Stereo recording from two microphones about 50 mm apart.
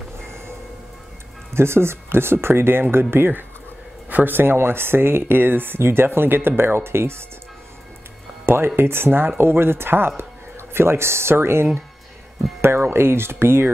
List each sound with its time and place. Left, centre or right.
1.5 s speech: right
8.5 s speech: right